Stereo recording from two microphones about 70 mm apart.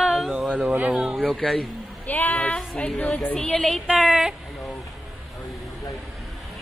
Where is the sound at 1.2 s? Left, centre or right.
Centre.